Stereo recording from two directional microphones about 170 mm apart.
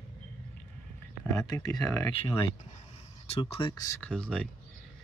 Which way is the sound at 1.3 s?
20° left (ahead or behind).